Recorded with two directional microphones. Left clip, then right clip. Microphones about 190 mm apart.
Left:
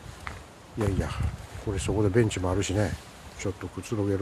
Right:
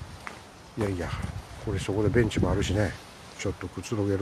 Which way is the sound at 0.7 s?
10° left (ahead or behind).